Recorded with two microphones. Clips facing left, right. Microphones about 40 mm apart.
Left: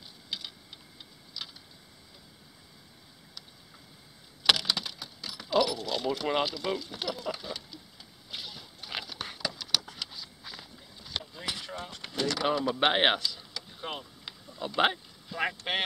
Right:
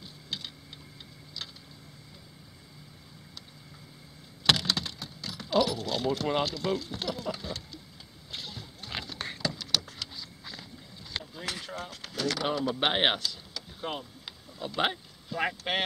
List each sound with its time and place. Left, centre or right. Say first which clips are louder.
4.5 s speech: even; centre
8.3 s a sound: right 1 dB; centre
11.6 s speech: right 1 dB; centre